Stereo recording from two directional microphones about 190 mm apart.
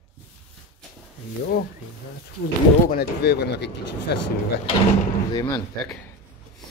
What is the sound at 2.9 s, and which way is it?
Speech, 55° left (ahead or behind).